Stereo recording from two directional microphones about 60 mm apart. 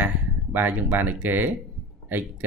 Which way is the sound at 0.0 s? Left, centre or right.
Right.